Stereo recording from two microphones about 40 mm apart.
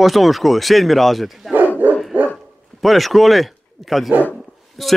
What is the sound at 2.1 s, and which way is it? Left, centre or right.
Dog, right.